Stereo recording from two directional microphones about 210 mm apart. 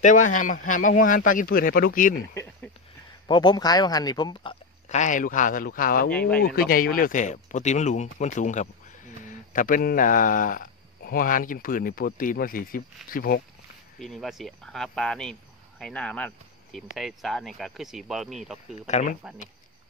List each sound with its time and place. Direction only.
0.0 s speech: 35° left (ahead or behind)
2.3 s a sound: 10° left (ahead or behind)
3.3 s speech: 20° left (ahead or behind); by 6.0 s 40° left (ahead or behind)
6.0 s speech: 5° left (ahead or behind)
6.7 s speech: 45° left (ahead or behind)
13.9 s speech: centre (ahead or behind)
18.9 s speech: 35° left (ahead or behind)